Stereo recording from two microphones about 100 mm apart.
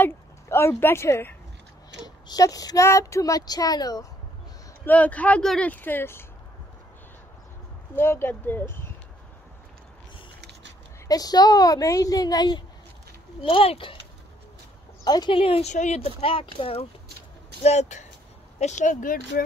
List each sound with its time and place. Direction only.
0.0 s speech: 25° left (ahead or behind)
2.0 s speech: 40° left (ahead or behind)
4.8 s speech: 15° left (ahead or behind)
7.9 s speech: 25° left (ahead or behind)
11.1 s speech: 40° left (ahead or behind)
13.4 s speech: 60° left (ahead or behind)
15.0 s speech: 45° left (ahead or behind)
15.3 s speech: 75° left (ahead or behind)
18.6 s speech: 90° left